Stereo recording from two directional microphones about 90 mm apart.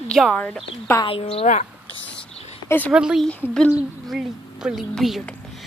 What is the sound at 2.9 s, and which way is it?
Speech, 10° right (ahead or behind).